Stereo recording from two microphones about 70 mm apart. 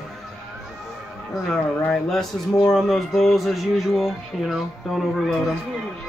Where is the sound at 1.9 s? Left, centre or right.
Centre.